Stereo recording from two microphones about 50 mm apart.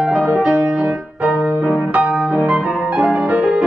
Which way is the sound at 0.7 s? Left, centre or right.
Right.